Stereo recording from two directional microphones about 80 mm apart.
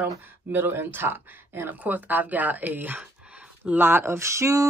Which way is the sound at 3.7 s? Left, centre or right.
Right.